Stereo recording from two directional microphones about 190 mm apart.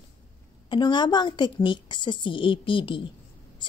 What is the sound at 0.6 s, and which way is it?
A man's voice, 25° left (ahead or behind).